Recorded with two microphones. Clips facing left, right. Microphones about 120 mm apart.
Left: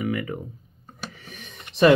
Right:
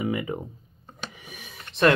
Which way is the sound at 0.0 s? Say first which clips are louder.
Even; 20° right (ahead or behind).